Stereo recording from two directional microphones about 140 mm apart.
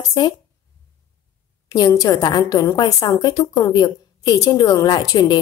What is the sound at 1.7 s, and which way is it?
A woman's voice, 25° left (ahead or behind).